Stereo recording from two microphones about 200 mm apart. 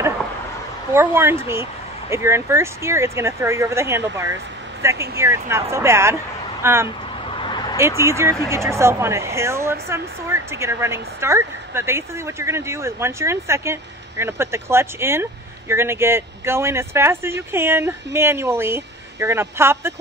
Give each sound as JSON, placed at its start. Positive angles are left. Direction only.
{"t": 0.9, "sound": "speech", "side_deg": -10}
{"t": 7.2, "sound": "a sound", "side_deg": 25}
{"t": 8.0, "sound": "speech", "side_deg": -15}